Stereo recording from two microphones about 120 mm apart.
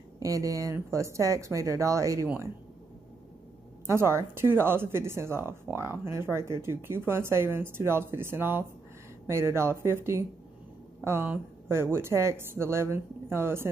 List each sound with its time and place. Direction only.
0.2 s a woman's voice: 25° right (ahead or behind)
3.8 s a woman's voice: 20° right (ahead or behind)